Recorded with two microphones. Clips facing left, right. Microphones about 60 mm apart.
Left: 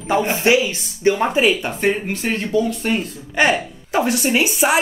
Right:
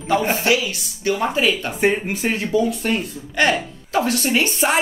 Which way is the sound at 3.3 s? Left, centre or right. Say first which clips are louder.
Left 2 dB; centre.